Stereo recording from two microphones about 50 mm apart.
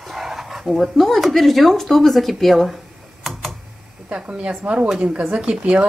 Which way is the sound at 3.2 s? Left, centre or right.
Centre.